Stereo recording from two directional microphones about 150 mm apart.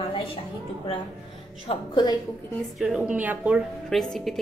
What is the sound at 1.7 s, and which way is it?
Speech, 35° left (ahead or behind).